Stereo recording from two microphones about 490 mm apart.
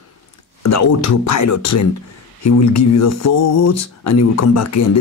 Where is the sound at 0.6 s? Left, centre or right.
Left.